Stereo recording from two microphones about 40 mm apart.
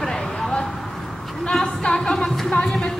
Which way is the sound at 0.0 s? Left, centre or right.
Left.